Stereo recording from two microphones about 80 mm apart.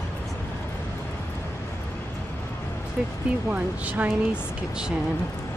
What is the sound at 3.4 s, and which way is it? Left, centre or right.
Speech, centre.